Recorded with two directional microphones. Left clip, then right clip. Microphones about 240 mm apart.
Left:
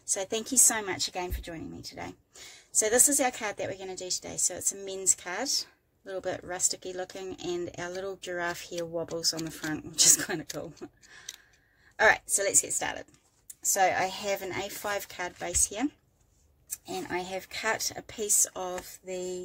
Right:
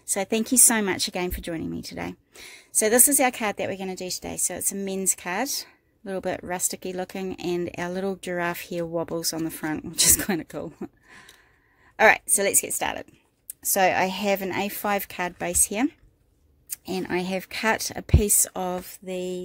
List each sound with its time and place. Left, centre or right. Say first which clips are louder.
0.1 s speech: right 6 dB; right